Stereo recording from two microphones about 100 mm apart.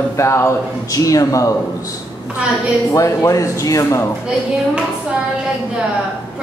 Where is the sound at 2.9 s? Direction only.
30° left (ahead or behind).